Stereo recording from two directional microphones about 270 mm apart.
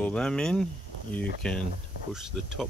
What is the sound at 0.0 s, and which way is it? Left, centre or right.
Speech, centre.